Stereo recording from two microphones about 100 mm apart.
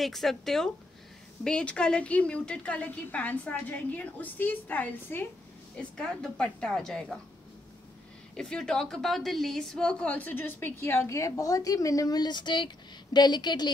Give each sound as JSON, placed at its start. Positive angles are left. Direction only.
{"t": 0.0, "sound": "a woman's voice", "side_deg": 0}
{"t": 8.4, "sound": "a woman's voice", "side_deg": 5}